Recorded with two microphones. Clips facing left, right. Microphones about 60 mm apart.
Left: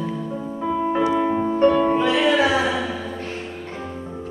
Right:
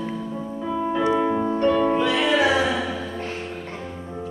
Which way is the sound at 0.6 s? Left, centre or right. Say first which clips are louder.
Left 2 dB; left.